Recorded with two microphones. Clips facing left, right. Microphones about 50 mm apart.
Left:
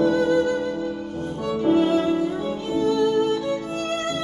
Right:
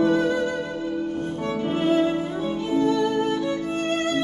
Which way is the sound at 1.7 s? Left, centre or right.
Right.